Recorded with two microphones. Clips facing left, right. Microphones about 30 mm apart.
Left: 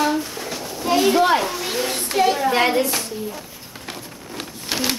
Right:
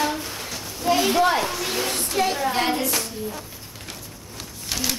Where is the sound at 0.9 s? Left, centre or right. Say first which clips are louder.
Left 3 dB; centre.